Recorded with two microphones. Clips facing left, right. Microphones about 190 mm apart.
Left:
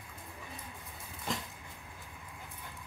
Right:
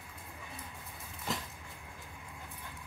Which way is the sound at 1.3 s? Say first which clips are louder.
Even; 5° right (ahead or behind).